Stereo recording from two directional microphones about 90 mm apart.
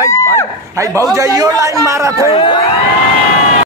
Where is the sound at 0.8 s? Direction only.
35° right (ahead or behind).